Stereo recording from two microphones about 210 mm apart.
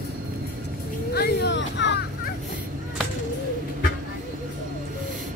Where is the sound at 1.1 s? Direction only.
55° left (ahead or behind).